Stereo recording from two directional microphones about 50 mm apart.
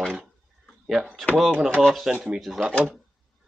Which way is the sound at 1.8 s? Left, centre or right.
Centre.